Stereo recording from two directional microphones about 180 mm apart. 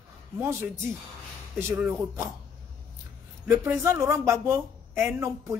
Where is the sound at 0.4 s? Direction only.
15° right (ahead or behind).